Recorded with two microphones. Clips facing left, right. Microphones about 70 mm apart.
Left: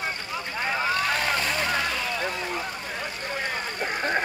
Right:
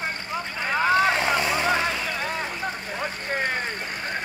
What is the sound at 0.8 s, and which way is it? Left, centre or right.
Vehicle, right.